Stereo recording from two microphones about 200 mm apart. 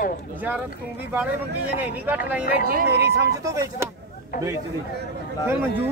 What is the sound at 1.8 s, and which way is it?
Speech, 10° right (ahead or behind).